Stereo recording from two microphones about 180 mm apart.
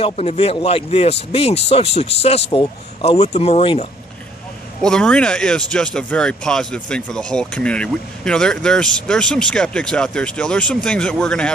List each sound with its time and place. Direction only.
0.0 s speech: 35° left (ahead or behind)
4.8 s speech: 5° left (ahead or behind)